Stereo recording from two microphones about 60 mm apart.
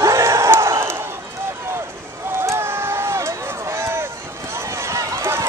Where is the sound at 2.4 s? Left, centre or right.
Right.